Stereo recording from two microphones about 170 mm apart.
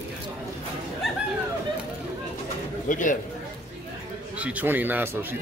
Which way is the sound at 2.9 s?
50° left (ahead or behind).